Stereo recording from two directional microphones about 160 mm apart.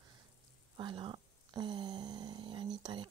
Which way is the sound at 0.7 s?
30° right (ahead or behind).